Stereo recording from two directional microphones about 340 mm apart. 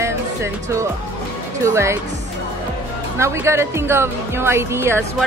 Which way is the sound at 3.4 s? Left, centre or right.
Centre.